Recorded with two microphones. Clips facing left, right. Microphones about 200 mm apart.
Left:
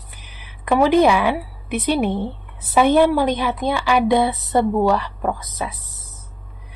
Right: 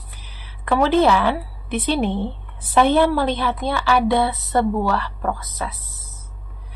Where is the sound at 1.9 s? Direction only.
10° left (ahead or behind).